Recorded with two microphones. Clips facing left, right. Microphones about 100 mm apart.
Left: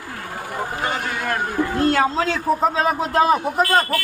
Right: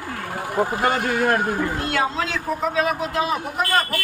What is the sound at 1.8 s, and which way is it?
A man's voice, 35° left (ahead or behind).